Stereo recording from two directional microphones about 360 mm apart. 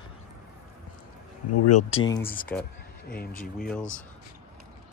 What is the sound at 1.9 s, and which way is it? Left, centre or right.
Speech, centre.